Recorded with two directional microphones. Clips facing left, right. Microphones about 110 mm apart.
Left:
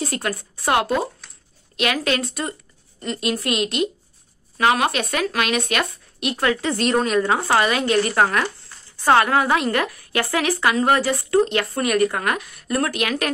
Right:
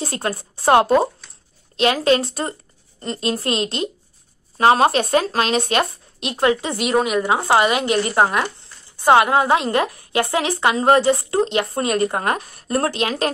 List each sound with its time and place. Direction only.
0.0 s a woman's voice: 30° right (ahead or behind)